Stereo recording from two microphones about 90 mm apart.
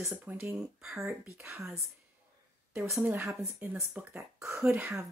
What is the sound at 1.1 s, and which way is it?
Speech, 30° right (ahead or behind).